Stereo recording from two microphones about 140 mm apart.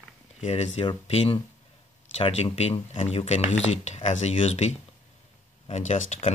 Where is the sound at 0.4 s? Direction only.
50° left (ahead or behind).